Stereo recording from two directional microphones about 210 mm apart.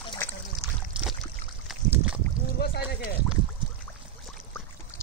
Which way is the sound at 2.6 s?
45° left (ahead or behind).